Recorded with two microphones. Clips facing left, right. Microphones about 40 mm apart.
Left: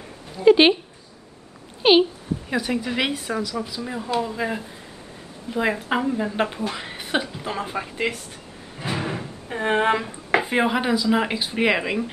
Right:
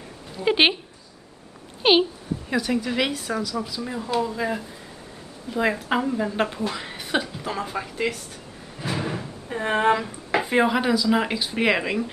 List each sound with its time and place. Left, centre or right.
0.5 s speech: centre
1.8 s speech: centre
2.5 s speech: centre
3.8 s speech: centre
8.8 s slam: left
9.2 s speech: centre